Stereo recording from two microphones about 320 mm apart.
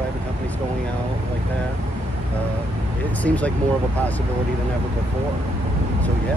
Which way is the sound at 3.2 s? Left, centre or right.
Centre.